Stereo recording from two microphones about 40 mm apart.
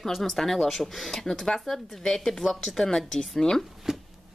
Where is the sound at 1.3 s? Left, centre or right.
Centre.